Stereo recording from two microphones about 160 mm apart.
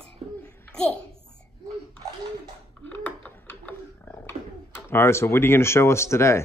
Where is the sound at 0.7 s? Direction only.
5° left (ahead or behind).